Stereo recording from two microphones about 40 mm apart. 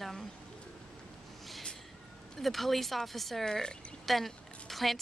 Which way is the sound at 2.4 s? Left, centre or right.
Centre.